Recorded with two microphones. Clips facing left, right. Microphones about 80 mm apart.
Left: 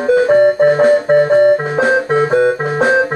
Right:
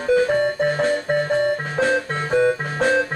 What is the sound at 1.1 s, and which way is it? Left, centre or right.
Music, left.